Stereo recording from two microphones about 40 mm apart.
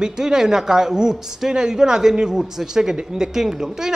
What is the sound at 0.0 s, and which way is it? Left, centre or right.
Speech, centre.